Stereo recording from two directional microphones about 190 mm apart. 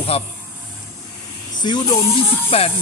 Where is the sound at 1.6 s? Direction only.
20° left (ahead or behind).